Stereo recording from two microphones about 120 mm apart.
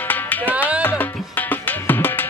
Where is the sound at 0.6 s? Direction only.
10° right (ahead or behind).